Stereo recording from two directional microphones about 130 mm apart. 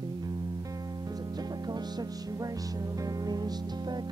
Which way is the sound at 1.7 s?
30° right (ahead or behind).